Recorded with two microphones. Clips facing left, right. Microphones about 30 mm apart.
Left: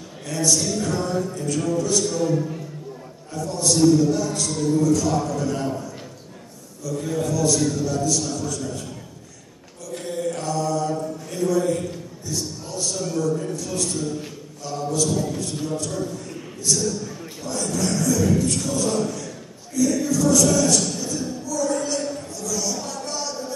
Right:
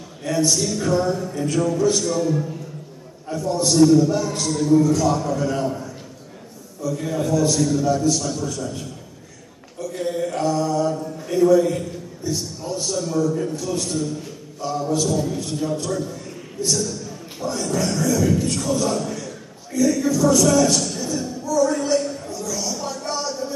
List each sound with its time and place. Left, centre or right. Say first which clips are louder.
0.2 s a man's voice: right 2 dB; centre
1.3 s a man's voice: right 3 dB; centre
2.0 s a man's voice: right 1 dB; centre
3.3 s a man's voice: right 3 dB; right
6.8 s a man's voice: right 2 dB; centre
9.9 s mantra: right 3 dB; centre
12.3 s a man's voice: right 4 dB; centre
14.6 s a man's voice: right 2 dB; centre
20.8 s a sound: right 1 dB; centre